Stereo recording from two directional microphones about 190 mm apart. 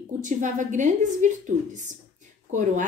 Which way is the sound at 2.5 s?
40° right (ahead or behind).